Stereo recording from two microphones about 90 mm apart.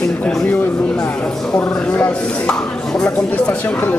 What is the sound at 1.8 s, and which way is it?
Speech, 15° left (ahead or behind).